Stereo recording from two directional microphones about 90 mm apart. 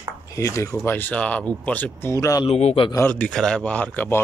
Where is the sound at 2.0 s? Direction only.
35° left (ahead or behind).